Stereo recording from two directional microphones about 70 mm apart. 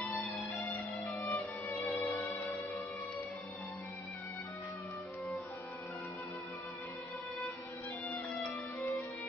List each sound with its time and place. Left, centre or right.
0.0 s music: left
1.2 s violin: left
2.1 s music: left